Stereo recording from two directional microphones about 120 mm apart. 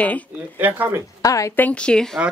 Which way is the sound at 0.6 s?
15° right (ahead or behind).